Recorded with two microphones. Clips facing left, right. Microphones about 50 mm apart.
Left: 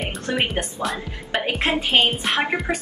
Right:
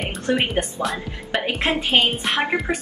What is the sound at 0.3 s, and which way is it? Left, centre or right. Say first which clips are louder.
Speech: right 3 dB; centre.